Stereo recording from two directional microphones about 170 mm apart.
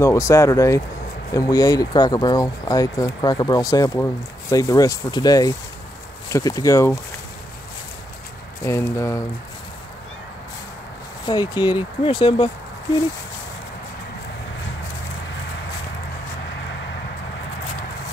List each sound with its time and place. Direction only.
0.0 s speech: 15° left (ahead or behind)
8.6 s speech: 15° left (ahead or behind)
11.2 s speech: 25° left (ahead or behind)